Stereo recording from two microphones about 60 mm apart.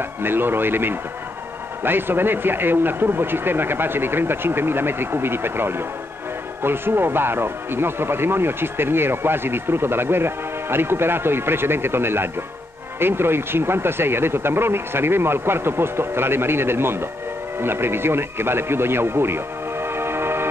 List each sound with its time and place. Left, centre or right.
0.2 s speech: right